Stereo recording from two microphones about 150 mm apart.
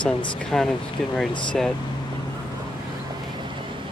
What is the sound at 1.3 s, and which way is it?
Speech, 35° left (ahead or behind).